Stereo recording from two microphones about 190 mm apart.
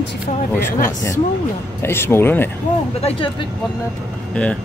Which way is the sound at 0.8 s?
15° left (ahead or behind).